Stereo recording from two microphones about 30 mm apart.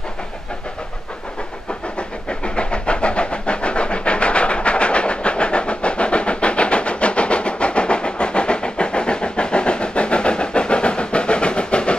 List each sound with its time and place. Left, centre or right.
2.0 s vehicle: left